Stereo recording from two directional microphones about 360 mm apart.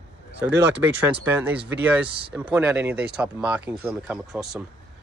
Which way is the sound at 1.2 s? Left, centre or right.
Centre.